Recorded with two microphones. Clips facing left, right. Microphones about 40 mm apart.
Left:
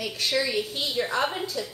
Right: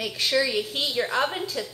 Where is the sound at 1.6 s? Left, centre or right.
Right.